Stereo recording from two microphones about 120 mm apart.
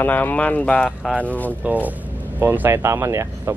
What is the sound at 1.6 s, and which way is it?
Speech, 15° right (ahead or behind).